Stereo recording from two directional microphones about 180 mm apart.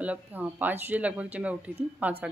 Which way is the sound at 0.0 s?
10° right (ahead or behind).